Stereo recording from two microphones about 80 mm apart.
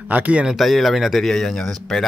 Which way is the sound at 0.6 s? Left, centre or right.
Centre.